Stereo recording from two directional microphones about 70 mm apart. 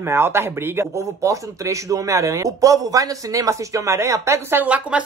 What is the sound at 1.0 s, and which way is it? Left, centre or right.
Speech, right.